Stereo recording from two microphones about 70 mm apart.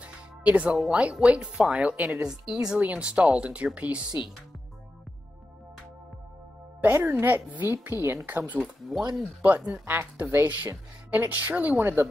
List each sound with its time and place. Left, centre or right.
0.0 s music: right
0.7 s speech: centre
1.1 s a woman's voice: centre
6.8 s speech: right
8.0 s a woman's voice: right
8.9 s speech: centre
9.4 s a woman's voice: right